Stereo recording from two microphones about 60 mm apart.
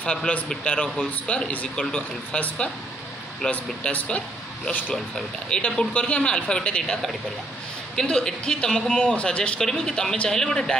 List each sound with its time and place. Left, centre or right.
0.0 s a man's voice: centre
5.5 s a man's voice: centre